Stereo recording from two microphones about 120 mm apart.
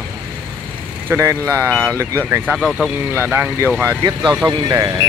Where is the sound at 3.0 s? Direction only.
20° right (ahead or behind).